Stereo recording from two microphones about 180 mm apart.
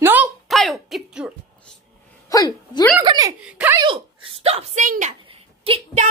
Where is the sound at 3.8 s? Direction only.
30° right (ahead or behind).